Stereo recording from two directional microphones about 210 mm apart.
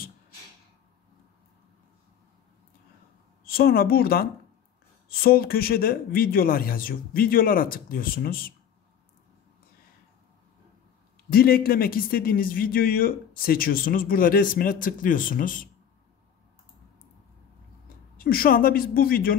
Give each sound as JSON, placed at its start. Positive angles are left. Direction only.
{"t": 3.4, "sound": "a man's voice", "side_deg": 45}
{"t": 11.3, "sound": "a man's voice", "side_deg": 45}
{"t": 18.1, "sound": "a man's voice", "side_deg": 45}